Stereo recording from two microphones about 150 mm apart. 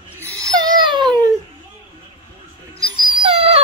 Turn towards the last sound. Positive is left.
turn(degrees=-40)  # may be behind; listen again after turning